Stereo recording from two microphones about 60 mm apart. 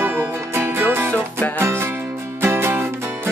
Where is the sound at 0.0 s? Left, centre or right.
Right.